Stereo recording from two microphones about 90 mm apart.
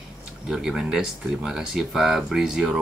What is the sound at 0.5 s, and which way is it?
Speech, 5° right (ahead or behind).